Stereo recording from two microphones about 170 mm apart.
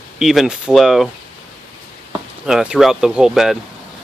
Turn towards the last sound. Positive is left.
turn(degrees=0)  # may be behind; listen again after turning